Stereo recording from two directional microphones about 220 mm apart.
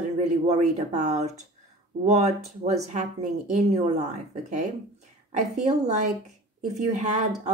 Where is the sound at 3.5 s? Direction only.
30° right (ahead or behind).